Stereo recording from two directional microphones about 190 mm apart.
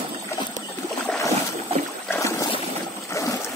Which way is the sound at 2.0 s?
15° left (ahead or behind).